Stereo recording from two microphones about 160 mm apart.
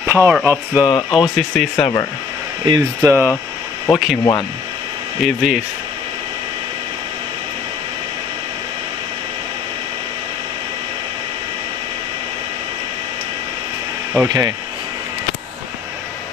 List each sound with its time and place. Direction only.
0.0 s speech: 15° right (ahead or behind)
0.8 s speech: 30° left (ahead or behind)
2.6 s speech: 25° right (ahead or behind)
3.9 s speech: centre (ahead or behind)
4.2 s speech: 25° left (ahead or behind)
5.2 s speech: centre (ahead or behind)
14.1 s speech: 20° right (ahead or behind)